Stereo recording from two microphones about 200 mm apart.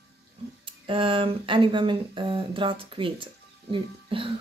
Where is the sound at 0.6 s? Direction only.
25° right (ahead or behind).